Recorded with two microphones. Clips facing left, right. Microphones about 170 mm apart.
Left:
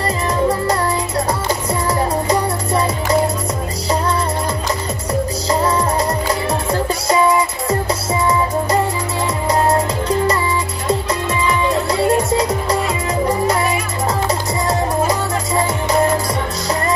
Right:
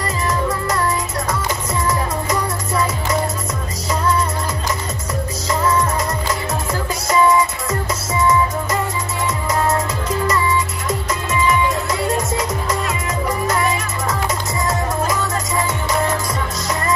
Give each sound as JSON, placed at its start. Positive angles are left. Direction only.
{"t": 0.0, "sound": "music", "side_deg": 35}
{"t": 5.5, "sound": "music", "side_deg": 35}